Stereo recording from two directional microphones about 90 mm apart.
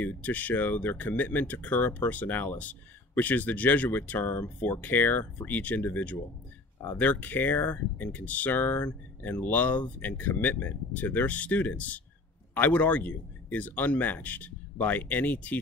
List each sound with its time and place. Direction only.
0.0 s speech: 15° left (ahead or behind)